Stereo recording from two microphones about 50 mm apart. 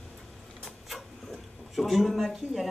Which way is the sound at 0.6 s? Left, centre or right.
Centre.